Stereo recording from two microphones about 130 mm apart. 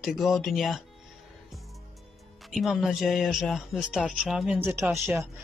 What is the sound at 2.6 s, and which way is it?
Speech, centre (ahead or behind).